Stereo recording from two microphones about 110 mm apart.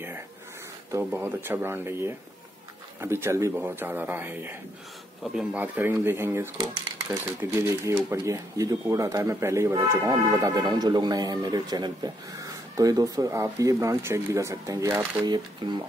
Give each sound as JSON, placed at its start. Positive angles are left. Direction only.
{"t": 0.9, "sound": "speech", "side_deg": -20}
{"t": 5.2, "sound": "speech", "side_deg": -5}
{"t": 15.2, "sound": "speech", "side_deg": -40}